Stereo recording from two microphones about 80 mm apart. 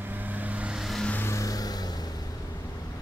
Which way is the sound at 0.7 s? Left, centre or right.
Centre.